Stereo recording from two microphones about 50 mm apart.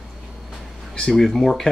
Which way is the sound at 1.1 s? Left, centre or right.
Centre.